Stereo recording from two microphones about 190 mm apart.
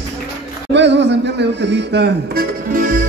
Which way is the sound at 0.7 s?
65° right (ahead or behind).